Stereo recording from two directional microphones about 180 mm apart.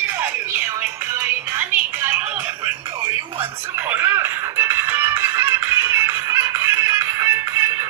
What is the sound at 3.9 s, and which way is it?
Music, 10° right (ahead or behind).